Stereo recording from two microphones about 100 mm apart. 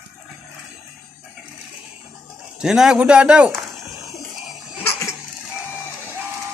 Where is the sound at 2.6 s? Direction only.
5° right (ahead or behind).